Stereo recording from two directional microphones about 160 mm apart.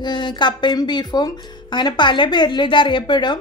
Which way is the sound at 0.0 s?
30° left (ahead or behind).